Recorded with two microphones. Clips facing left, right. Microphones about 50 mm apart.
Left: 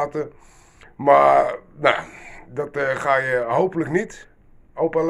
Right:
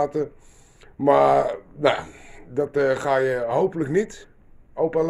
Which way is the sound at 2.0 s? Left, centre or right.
Left.